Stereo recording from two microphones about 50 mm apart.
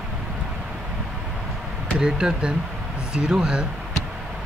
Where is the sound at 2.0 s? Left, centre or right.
Centre.